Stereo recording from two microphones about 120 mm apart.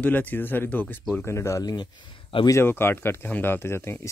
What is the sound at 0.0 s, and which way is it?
Speech, 15° left (ahead or behind).